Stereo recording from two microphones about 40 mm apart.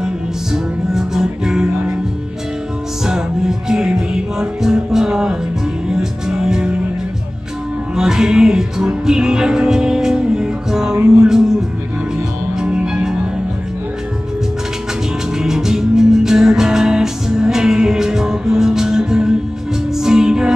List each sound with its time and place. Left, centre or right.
0.0 s music: centre
3.1 s music: centre
7.9 s music: centre
12.5 s music: centre
15.3 s music: centre